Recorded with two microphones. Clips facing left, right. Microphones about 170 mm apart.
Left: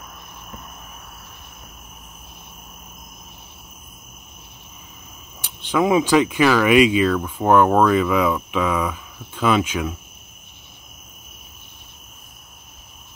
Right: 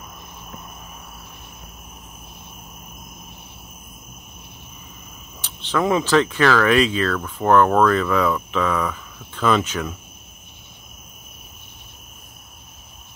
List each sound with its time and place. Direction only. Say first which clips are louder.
5.4 s speech: left 2 dB; 10° left (ahead or behind)